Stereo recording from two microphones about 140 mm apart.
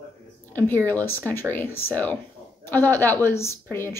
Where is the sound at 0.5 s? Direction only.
15° left (ahead or behind).